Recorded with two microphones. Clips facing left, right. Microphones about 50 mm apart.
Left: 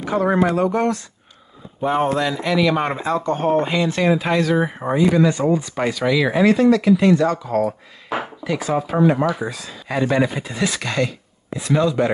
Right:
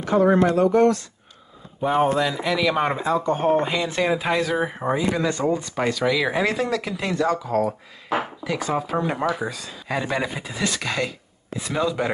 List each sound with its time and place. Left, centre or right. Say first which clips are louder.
0.4 s speech: right 1 dB; centre
1.8 s speech: left 1 dB; centre